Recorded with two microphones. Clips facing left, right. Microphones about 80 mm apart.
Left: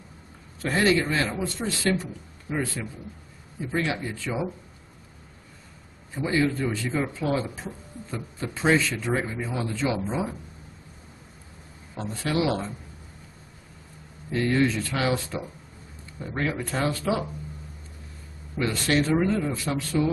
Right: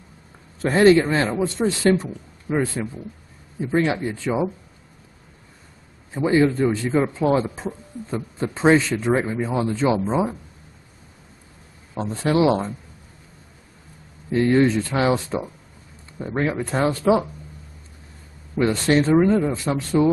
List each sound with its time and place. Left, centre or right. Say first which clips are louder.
0.6 s a man's voice: right 8 dB; right
6.1 s speech: right 7 dB; right
11.9 s speech: right 7 dB; right
14.3 s speech: right 6 dB; right
18.6 s speech: right 6 dB; right